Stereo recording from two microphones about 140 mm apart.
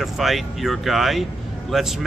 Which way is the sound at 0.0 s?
Centre (ahead or behind).